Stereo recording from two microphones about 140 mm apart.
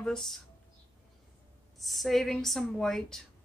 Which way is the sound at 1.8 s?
Centre (ahead or behind).